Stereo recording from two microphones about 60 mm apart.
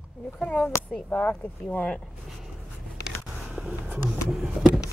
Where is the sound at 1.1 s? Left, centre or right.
Left.